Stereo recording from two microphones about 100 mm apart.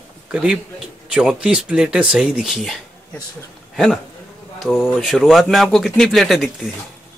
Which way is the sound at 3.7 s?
5° left (ahead or behind).